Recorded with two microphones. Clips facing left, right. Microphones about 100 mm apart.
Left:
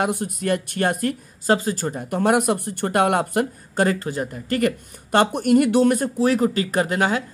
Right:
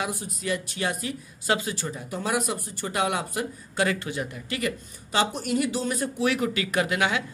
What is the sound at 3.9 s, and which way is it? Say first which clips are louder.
Speech: left 5 dB; 40° left (ahead or behind).